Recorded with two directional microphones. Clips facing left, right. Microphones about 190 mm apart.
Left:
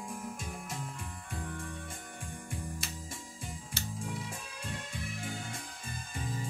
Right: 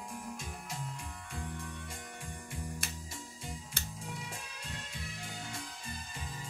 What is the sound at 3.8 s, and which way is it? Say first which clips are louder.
Music: left 4 dB; 55° right (ahead or behind).